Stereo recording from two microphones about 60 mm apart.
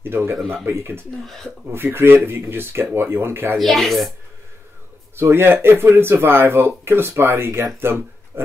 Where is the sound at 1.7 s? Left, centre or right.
Right.